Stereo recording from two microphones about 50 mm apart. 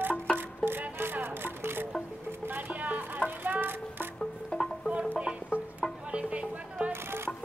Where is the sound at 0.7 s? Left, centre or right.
Right.